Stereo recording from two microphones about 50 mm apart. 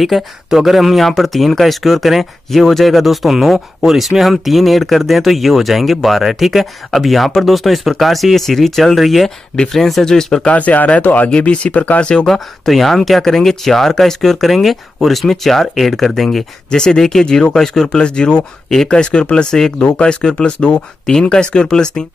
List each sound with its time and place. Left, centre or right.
0.1 s speech: centre
10.5 s speech: left
11.2 s speech: left
12.0 s speech: centre
12.3 s speech: centre
16.7 s speech: centre